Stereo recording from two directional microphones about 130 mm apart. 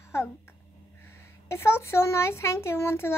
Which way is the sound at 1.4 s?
20° left (ahead or behind).